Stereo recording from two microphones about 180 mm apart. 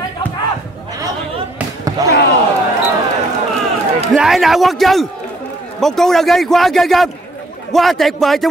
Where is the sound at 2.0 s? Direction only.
20° right (ahead or behind).